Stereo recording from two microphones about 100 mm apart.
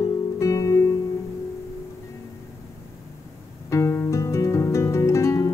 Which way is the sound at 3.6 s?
30° left (ahead or behind).